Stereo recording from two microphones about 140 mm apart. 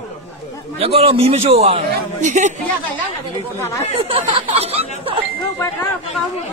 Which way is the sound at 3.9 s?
45° right (ahead or behind).